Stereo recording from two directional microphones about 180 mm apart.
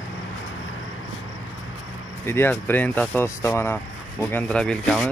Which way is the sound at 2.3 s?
10° left (ahead or behind).